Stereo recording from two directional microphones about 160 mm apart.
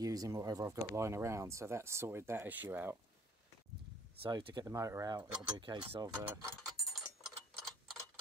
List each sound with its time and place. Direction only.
0.0 s speech: 20° right (ahead or behind)
4.3 s speech: 30° right (ahead or behind)
6.9 s clock: centre (ahead or behind)